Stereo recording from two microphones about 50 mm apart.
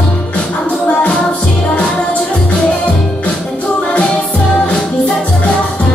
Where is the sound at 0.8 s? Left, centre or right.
Left.